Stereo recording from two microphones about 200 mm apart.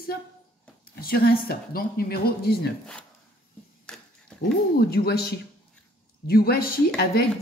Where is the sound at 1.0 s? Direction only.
45° left (ahead or behind).